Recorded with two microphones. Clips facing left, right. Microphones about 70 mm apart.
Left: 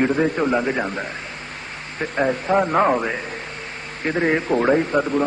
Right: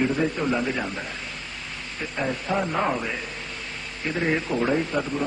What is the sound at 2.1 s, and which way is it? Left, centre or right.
A man's voice, left.